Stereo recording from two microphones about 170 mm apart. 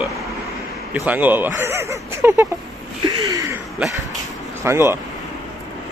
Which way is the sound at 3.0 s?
20° right (ahead or behind).